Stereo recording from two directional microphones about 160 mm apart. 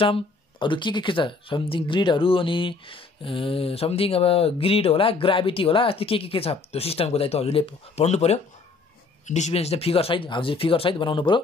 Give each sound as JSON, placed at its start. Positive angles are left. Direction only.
{"t": 0.0, "sound": "speech", "side_deg": 30}